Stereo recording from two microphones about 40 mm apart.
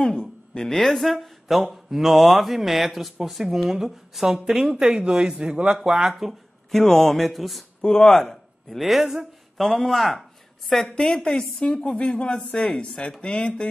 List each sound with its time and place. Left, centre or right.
0.0 s speech: centre; by 5.8 s right
5.8 s speech: centre
6.9 s speech: centre
7.8 s a woman's voice: left
8.2 s speech: centre
9.6 s speech: centre
10.7 s a woman's voice: centre